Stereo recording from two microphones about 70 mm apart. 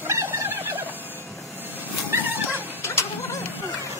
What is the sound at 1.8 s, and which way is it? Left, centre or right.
Music, right.